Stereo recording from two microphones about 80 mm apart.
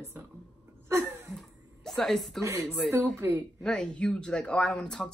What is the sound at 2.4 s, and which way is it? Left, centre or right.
Speech, right.